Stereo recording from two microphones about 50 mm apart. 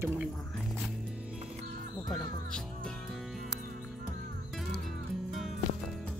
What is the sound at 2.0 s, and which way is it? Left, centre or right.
Music, centre.